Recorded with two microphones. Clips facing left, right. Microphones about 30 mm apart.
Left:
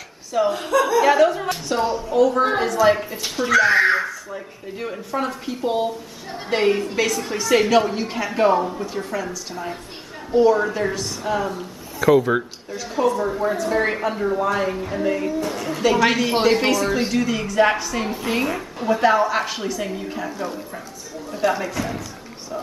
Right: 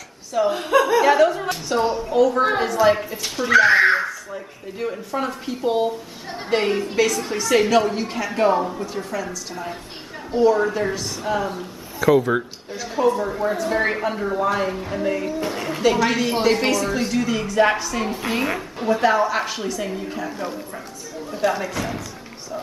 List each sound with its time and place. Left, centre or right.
0.3 s a woman's voice: centre
0.7 s a woman's voice: right
1.0 s a woman's voice: centre
3.4 s speech: centre
4.1 s a woman's voice: centre
15.4 s a woman's voice: centre
16.4 s a woman's voice: centre